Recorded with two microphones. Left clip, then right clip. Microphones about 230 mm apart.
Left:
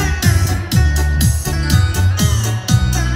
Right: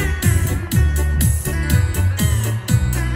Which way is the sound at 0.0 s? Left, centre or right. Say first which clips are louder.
Left 4 dB; centre.